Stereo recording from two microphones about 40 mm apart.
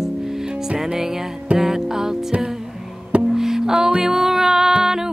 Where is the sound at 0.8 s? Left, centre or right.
Centre.